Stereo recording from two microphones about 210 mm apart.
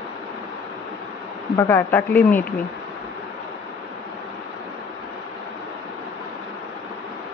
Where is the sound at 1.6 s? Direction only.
10° left (ahead or behind).